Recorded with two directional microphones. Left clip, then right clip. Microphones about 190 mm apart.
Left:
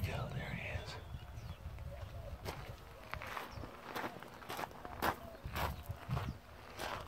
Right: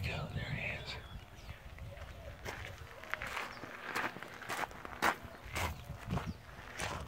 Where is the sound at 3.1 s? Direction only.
Centre (ahead or behind).